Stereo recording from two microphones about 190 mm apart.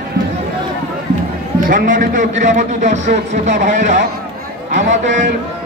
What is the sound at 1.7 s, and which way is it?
A man's voice, 45° right (ahead or behind).